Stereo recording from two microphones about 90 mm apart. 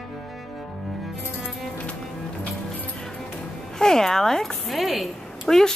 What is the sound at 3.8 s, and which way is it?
A woman's voice, 5° left (ahead or behind).